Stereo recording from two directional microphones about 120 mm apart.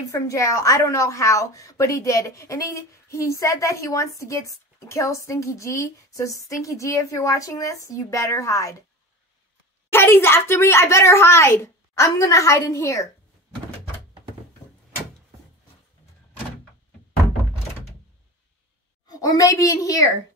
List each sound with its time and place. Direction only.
0.1 s a woman's voice: 25° left (ahead or behind)
9.9 s a woman's voice: 20° left (ahead or behind)
19.0 s a sound: 30° left (ahead or behind)